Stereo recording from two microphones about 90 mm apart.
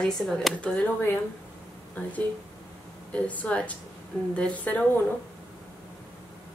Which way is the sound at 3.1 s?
15° left (ahead or behind).